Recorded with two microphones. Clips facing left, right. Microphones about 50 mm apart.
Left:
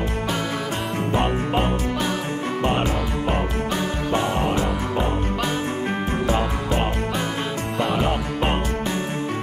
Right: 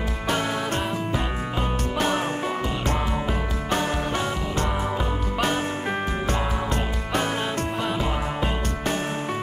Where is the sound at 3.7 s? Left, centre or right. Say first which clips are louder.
Right 1 dB; right.